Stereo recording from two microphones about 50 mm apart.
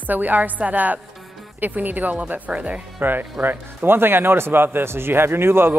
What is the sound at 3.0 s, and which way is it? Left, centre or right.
Speech, right.